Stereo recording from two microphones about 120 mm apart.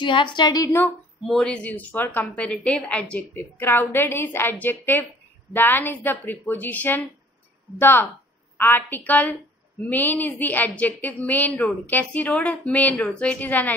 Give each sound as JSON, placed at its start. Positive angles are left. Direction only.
{"t": 0.0, "sound": "a woman's voice", "side_deg": 40}
{"t": 1.2, "sound": "a woman's voice", "side_deg": 5}